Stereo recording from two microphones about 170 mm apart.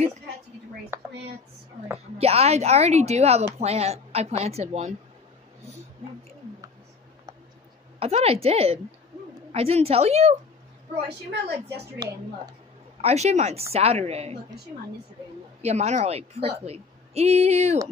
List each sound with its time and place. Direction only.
0.9 s a sound: 10° right (ahead or behind)
2.1 s a woman's voice: 35° right (ahead or behind)
8.0 s a woman's voice: 35° right (ahead or behind)
13.0 s a woman's voice: 40° right (ahead or behind)
15.6 s a woman's voice: 40° right (ahead or behind)